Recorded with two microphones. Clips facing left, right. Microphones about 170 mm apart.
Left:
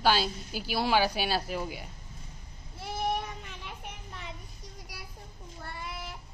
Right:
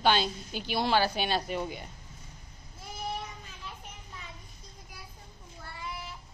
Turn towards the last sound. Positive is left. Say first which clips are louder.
# left 3 dB
turn(degrees=80)